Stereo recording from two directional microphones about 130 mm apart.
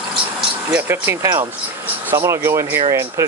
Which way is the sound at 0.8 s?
20° right (ahead or behind).